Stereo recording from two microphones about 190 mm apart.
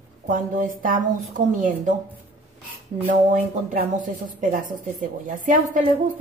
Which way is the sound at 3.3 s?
40° right (ahead or behind).